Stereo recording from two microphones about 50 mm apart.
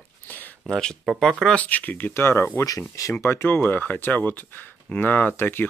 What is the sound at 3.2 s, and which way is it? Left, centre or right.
Speech, left.